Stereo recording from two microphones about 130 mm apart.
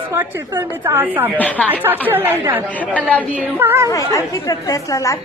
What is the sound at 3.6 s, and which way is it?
Speech, 15° right (ahead or behind).